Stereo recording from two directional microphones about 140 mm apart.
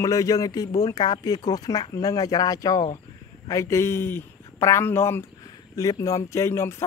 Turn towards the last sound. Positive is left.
turn(degrees=20)  # may be behind; listen again after turning